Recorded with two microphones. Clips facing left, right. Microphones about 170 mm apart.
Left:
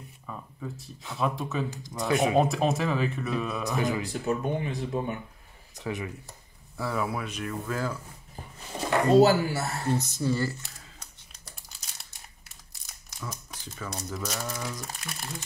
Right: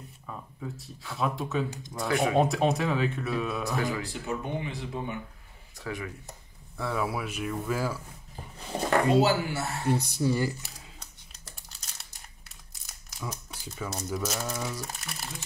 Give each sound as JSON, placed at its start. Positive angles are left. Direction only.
{"t": 0.3, "sound": "speech", "side_deg": 0}
{"t": 2.0, "sound": "speech", "side_deg": 20}
{"t": 2.3, "sound": "speech", "side_deg": 0}
{"t": 3.6, "sound": "speech", "side_deg": 20}
{"t": 4.1, "sound": "speech", "side_deg": 45}
{"t": 5.8, "sound": "speech", "side_deg": 20}
{"t": 6.8, "sound": "speech", "side_deg": 0}
{"t": 8.7, "sound": "a sound", "side_deg": -40}
{"t": 9.1, "sound": "speech", "side_deg": 40}
{"t": 9.8, "sound": "speech", "side_deg": -15}
{"t": 13.2, "sound": "speech", "side_deg": -10}